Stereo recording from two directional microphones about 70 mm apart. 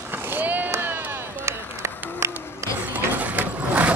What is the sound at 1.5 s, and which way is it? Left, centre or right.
Run, right.